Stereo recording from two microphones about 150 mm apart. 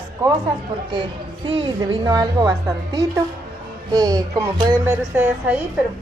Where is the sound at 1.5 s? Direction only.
35° right (ahead or behind).